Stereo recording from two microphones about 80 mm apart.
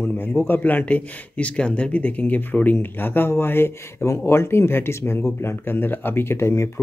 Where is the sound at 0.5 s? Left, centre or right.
Left.